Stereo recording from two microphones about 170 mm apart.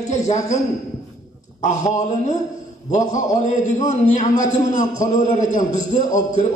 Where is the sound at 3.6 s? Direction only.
45° left (ahead or behind).